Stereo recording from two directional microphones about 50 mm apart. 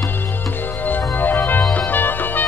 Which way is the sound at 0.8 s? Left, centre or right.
Left.